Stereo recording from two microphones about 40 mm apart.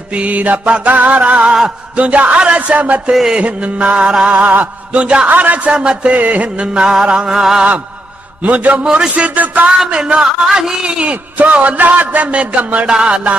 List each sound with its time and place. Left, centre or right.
0.1 s music: right
4.4 s mantra: right
4.9 s music: right
5.3 s music: right
5.7 s music: right
8.4 s music: right
9.8 s music: right
11.5 s music: right
12.8 s music: right